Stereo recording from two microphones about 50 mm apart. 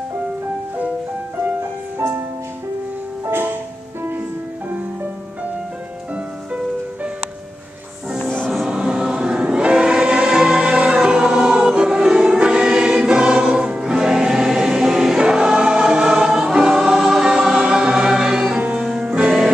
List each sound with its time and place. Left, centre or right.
1.6 s music: right
3.3 s music: right
6.1 s music: right
8.6 s choir: centre
17.6 s music: centre